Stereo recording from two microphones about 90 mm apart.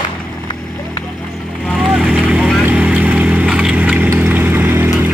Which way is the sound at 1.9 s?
5° right (ahead or behind).